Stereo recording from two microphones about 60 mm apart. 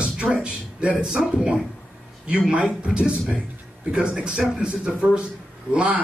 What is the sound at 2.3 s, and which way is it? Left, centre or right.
Music, centre.